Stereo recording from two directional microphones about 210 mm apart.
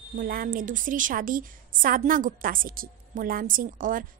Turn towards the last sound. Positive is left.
turn(degrees=-40)  # may be behind; listen again after turning